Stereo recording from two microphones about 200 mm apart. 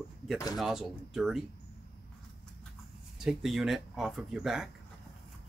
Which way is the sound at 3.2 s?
Centre (ahead or behind).